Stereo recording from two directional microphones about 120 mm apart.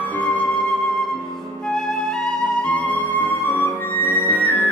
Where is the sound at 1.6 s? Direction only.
Centre (ahead or behind).